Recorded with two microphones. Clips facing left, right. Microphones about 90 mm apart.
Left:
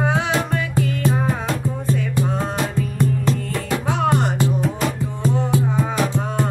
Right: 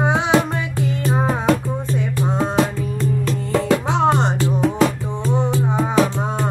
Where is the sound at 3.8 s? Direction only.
25° right (ahead or behind).